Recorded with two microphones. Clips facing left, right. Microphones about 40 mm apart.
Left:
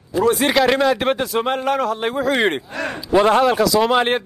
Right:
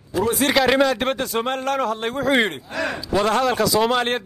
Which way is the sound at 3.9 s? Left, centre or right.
Centre.